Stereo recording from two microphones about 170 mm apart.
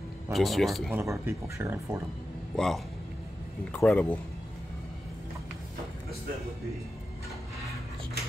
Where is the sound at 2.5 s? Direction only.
Centre (ahead or behind).